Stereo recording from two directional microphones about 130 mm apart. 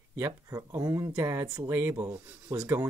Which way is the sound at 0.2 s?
25° right (ahead or behind).